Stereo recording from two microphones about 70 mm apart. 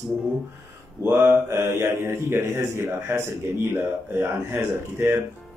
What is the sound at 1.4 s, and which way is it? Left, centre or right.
Speech, right.